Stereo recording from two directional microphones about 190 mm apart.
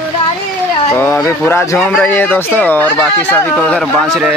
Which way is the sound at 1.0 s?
15° left (ahead or behind).